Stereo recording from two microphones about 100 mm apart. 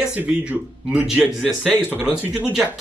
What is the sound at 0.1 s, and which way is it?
Speech, 10° right (ahead or behind).